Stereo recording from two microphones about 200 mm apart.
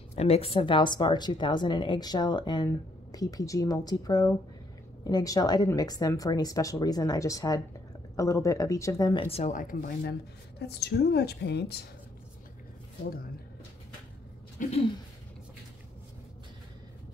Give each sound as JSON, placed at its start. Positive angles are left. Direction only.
{"t": 0.1, "sound": "a woman's voice", "side_deg": 30}
{"t": 9.3, "sound": "a woman's voice", "side_deg": 35}
{"t": 14.6, "sound": "speech", "side_deg": 40}